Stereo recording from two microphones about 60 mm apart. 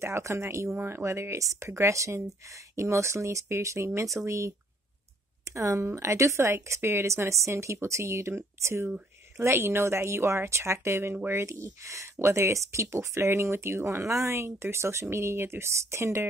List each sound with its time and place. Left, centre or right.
0.0 s speech: right